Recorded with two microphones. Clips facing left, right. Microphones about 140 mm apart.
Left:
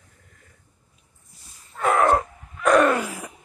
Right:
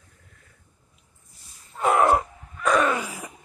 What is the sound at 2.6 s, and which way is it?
Groan, 10° left (ahead or behind).